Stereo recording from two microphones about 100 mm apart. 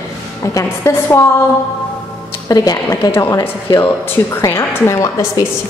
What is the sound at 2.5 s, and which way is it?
Speech, 40° left (ahead or behind).